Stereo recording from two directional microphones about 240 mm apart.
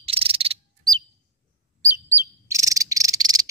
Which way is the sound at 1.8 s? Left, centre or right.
Centre.